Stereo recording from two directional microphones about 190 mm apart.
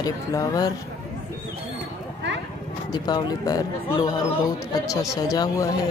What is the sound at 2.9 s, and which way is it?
A man's voice, 20° left (ahead or behind).